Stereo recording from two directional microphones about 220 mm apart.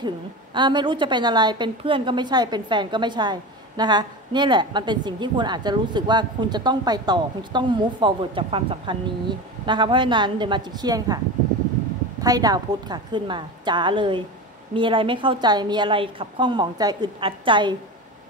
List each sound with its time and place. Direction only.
0.0 s a woman's voice: 20° right (ahead or behind)
12.2 s a woman's voice: 15° right (ahead or behind)